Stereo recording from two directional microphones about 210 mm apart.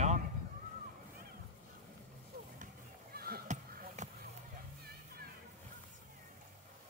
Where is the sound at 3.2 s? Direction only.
45° right (ahead or behind).